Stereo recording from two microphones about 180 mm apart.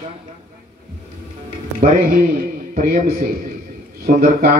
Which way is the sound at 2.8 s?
50° right (ahead or behind).